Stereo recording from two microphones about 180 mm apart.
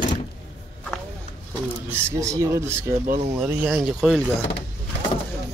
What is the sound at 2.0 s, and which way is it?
Speech, 15° right (ahead or behind).